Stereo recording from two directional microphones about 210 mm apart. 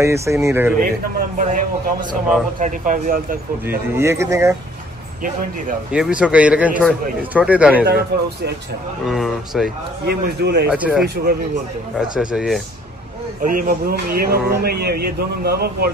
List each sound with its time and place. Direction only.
0.0 s speech: 15° right (ahead or behind)
1.4 s a man's voice: 40° right (ahead or behind)
3.9 s speech: 10° right (ahead or behind)
5.9 s a man's voice: 5° right (ahead or behind)
8.1 s speech: 50° right (ahead or behind)
9.0 s a man's voice: centre (ahead or behind)
10.0 s speech: 50° right (ahead or behind)
10.7 s a man's voice: centre (ahead or behind)
12.2 s a man's voice: centre (ahead or behind)
13.4 s speech: 40° right (ahead or behind)